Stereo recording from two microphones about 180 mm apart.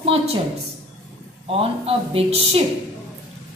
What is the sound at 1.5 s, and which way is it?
A woman's voice, 30° right (ahead or behind).